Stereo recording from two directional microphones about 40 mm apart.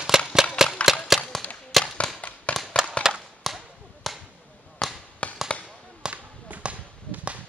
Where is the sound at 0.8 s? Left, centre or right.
Left.